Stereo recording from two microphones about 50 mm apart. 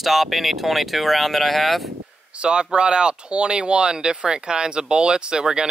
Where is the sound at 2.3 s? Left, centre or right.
Centre.